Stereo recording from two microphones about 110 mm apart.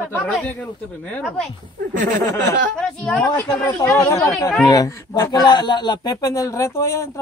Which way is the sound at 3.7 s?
30° left (ahead or behind).